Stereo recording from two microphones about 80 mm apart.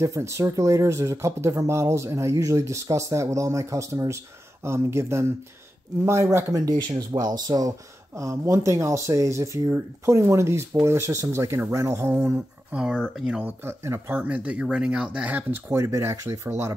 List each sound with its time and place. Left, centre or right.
0.0 s speech: right
7.1 s speech: right
8.1 s speech: right
12.7 s speech: centre
13.4 s speech: right
15.3 s speech: right
15.8 s speech: right